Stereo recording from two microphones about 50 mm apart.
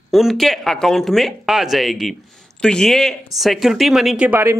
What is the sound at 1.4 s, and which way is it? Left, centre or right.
Speech, centre.